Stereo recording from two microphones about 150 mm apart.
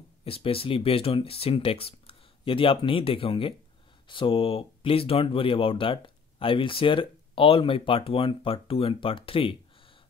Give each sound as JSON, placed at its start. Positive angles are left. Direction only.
{"t": 0.2, "sound": "speech", "side_deg": 40}